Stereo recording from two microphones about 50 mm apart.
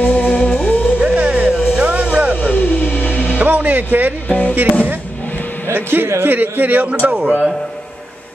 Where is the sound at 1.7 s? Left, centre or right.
Right.